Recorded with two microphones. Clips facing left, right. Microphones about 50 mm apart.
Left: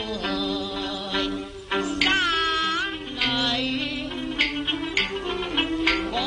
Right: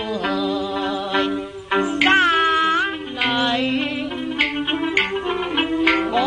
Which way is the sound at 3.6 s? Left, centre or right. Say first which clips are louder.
Right 6 dB; right.